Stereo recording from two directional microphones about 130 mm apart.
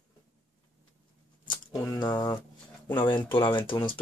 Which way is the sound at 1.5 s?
35° left (ahead or behind).